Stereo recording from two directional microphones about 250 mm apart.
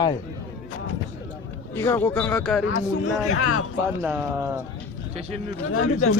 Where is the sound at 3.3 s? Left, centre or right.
Left.